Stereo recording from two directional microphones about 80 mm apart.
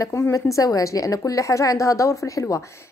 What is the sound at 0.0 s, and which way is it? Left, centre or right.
A woman's voice, left.